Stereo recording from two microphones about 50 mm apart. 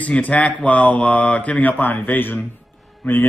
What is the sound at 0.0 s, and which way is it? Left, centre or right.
Speech, left.